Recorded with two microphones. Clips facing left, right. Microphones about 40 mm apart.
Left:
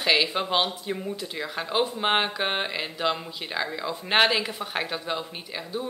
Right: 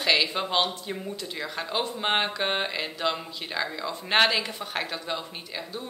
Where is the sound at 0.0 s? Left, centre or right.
Centre.